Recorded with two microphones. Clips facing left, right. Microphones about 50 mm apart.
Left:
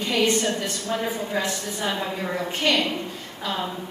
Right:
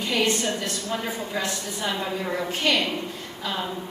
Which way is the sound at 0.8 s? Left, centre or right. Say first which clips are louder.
Left 2 dB; centre.